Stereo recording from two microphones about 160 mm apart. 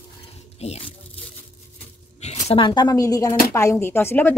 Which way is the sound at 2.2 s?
45° left (ahead or behind).